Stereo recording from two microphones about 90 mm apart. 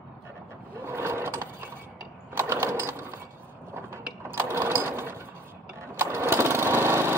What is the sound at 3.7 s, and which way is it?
Sewing machine, 25° right (ahead or behind).